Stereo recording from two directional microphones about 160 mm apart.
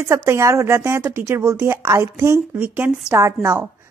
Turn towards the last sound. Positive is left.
turn(degrees=-15)  # may be behind; listen again after turning